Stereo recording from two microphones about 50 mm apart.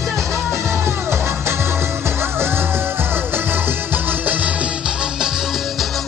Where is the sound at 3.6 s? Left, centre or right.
Right.